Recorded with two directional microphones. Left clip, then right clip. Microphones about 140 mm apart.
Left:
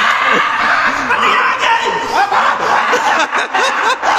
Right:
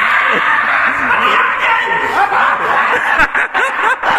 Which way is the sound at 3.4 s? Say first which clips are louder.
Even; 25° left (ahead or behind).